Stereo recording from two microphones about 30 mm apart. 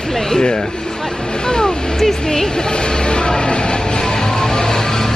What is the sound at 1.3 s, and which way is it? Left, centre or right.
Vehicle, left.